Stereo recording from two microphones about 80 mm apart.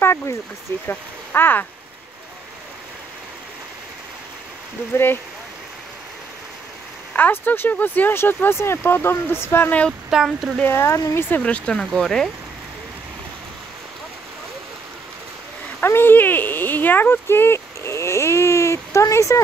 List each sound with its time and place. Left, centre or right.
0.8 s speech: left
4.9 s speech: left
7.2 s speech: left
9.7 s speech: centre
10.0 s speech: centre
10.6 s speech: left
11.4 s speech: centre
15.8 s speech: left